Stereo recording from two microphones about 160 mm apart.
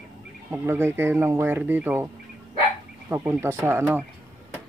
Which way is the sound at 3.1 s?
15° right (ahead or behind).